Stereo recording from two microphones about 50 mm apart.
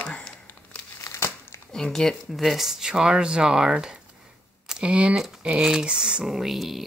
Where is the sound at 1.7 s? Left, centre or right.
Centre.